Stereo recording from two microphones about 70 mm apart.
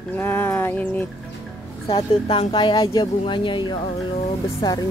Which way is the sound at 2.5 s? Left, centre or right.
Left.